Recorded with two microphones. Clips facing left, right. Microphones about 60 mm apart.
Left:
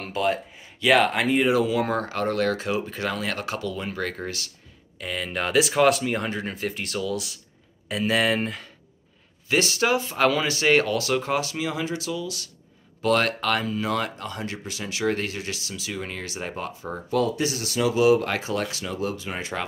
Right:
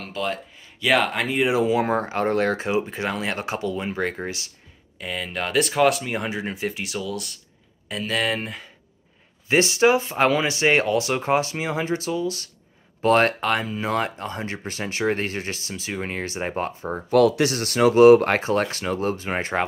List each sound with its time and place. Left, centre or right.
0.0 s speech: centre
1.5 s speech: right
4.9 s speech: centre
9.5 s speech: right
17.1 s speech: right